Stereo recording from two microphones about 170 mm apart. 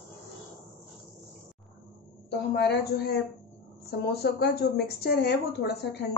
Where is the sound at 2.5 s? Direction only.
75° left (ahead or behind).